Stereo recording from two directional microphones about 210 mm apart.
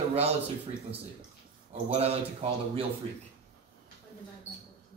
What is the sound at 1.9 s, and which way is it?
Speech, 30° right (ahead or behind).